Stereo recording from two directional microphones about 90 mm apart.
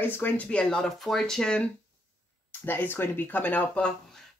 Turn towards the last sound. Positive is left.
turn(degrees=15)  # may be behind; listen again after turning